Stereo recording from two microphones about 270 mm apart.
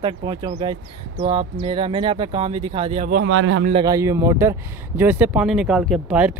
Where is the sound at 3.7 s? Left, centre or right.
Centre.